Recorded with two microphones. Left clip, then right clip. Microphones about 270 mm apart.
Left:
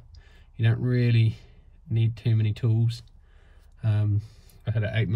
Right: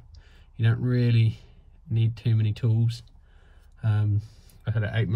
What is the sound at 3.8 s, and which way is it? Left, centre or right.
Speech, centre.